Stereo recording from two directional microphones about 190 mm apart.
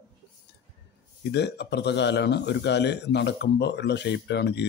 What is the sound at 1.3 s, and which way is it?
Speech, 60° left (ahead or behind).